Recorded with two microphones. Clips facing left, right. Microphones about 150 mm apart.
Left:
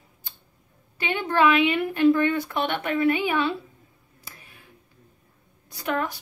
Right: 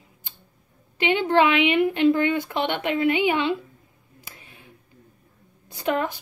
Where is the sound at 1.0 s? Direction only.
20° right (ahead or behind).